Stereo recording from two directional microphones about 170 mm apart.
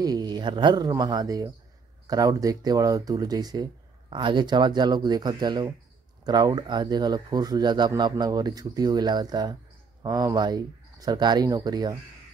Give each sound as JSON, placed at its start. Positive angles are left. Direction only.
{"t": 0.0, "sound": "speech", "side_deg": -25}